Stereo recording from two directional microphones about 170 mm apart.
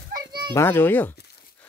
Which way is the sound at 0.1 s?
25° right (ahead or behind).